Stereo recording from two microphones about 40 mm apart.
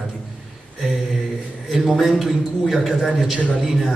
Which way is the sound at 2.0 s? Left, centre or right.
Centre.